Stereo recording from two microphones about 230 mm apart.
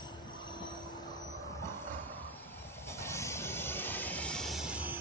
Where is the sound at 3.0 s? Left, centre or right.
Centre.